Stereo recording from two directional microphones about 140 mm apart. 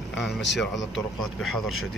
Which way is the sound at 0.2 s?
Centre (ahead or behind).